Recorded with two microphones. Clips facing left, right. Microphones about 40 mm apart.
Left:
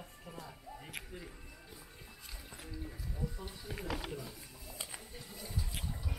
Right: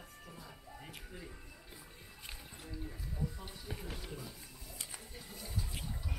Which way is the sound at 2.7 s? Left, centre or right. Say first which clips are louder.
Right 1 dB; centre.